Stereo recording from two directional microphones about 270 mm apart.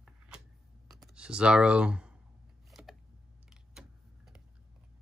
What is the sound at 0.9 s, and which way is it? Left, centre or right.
Speech, centre.